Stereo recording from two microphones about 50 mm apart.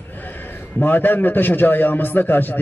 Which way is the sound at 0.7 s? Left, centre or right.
Left.